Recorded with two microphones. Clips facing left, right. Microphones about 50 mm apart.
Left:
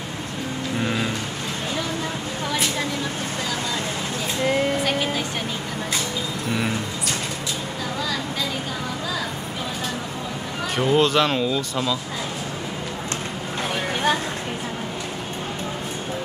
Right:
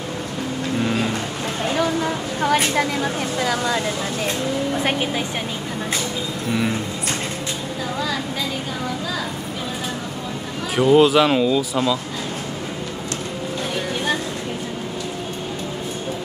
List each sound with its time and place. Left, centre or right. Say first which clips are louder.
2.4 s vehicle: right 7 dB; right
10.8 s speech: right 5 dB; centre